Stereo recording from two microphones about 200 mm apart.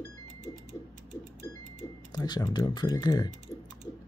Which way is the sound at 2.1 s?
20° left (ahead or behind).